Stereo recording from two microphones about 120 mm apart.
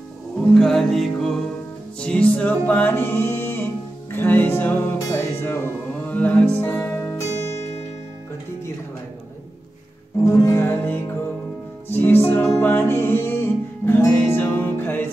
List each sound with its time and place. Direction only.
0.6 s music: 5° left (ahead or behind); by 7.2 s 20° left (ahead or behind)
10.2 s music: 25° left (ahead or behind)